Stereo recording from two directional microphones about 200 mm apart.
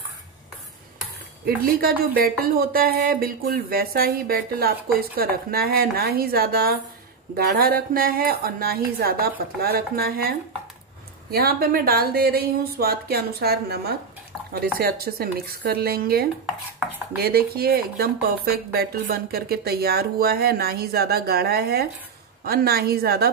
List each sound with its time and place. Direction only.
1.4 s speech: 50° right (ahead or behind)